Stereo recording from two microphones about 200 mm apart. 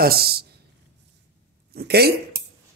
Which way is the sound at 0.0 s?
50° right (ahead or behind).